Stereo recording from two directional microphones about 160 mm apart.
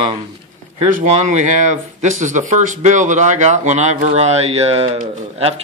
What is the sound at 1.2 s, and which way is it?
Speech, 50° right (ahead or behind).